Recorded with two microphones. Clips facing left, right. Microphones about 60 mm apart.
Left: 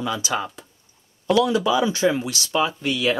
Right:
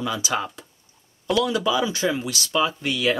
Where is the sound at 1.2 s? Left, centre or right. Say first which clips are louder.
Left 3 dB; left.